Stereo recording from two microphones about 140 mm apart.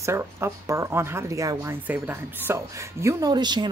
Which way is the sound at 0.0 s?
20° right (ahead or behind).